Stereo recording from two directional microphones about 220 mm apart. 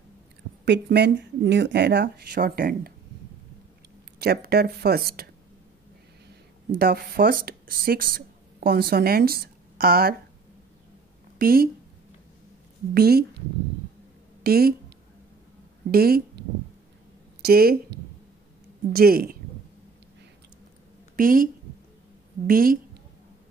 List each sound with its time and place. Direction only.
0.7 s speech: 50° right (ahead or behind)
4.2 s speech: 45° right (ahead or behind)
6.8 s speech: 40° right (ahead or behind)
11.3 s a woman's voice: 40° right (ahead or behind)
12.9 s speech: 45° right (ahead or behind)
14.4 s speech: 45° right (ahead or behind)
15.9 s speech: 45° right (ahead or behind)
18.9 s speech: 45° right (ahead or behind)
21.2 s a woman's voice: 40° right (ahead or behind)
22.5 s a woman's voice: 40° right (ahead or behind)